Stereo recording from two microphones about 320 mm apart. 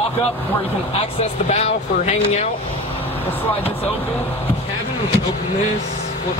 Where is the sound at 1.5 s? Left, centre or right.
Centre.